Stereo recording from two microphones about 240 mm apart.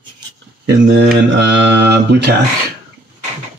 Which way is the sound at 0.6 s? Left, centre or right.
Right.